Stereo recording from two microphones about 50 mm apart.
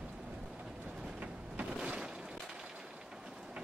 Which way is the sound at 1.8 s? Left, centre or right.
Centre.